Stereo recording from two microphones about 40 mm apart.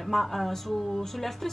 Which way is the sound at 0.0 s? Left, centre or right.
Centre.